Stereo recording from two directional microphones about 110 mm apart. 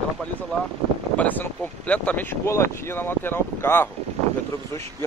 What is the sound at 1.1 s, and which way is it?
Speech, 15° left (ahead or behind).